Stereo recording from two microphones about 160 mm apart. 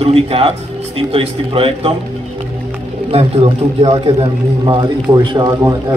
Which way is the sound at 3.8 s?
35° right (ahead or behind).